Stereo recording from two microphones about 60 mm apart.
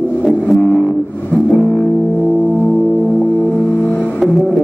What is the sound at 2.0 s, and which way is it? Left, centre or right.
Music, centre.